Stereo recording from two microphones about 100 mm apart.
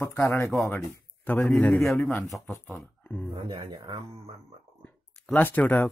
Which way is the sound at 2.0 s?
20° left (ahead or behind).